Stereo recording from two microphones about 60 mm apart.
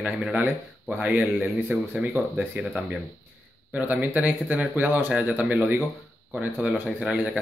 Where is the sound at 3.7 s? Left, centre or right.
Right.